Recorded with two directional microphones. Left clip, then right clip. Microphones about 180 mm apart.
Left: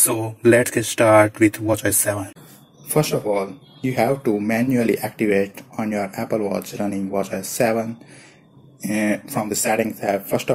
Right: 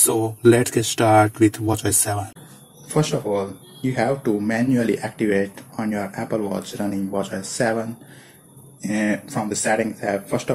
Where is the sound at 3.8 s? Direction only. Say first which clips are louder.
Left 2 dB; 30° left (ahead or behind).